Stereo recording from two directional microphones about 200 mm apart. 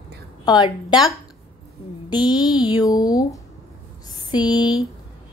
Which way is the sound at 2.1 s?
20° left (ahead or behind).